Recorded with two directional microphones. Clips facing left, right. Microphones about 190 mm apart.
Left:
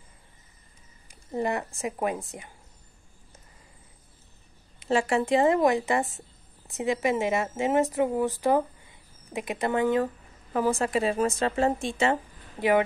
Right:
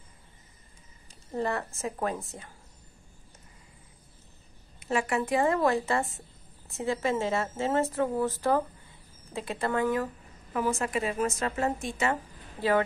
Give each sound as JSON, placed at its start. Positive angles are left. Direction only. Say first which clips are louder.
{"t": 1.0, "sound": "a sound", "louder": "left 2 dB", "side_deg": 15}
{"t": 1.8, "sound": "a woman's voice", "louder": "left 3 dB", "side_deg": 15}
{"t": 4.7, "sound": "a woman's voice", "louder": "left 4 dB", "side_deg": 30}
{"t": 10.5, "sound": "a woman's voice", "louder": "left 4 dB", "side_deg": 35}
{"t": 12.5, "sound": "speech", "louder": "left 3 dB", "side_deg": 15}